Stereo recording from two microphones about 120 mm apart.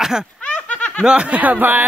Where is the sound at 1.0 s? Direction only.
10° right (ahead or behind).